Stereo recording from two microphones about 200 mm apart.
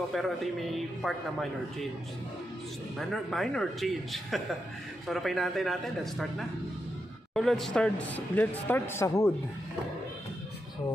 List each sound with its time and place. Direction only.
0.1 s a man's voice: centre (ahead or behind)
3.0 s a man's voice: centre (ahead or behind)